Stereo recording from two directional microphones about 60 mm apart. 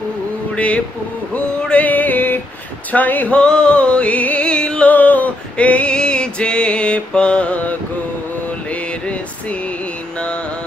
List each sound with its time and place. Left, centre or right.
1.6 s a sound: left
2.9 s speech: left
3.3 s music: centre
4.8 s male singing: left